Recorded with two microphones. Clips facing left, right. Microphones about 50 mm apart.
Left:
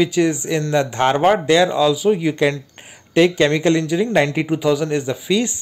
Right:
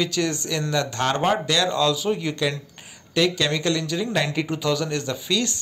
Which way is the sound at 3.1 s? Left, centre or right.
Left.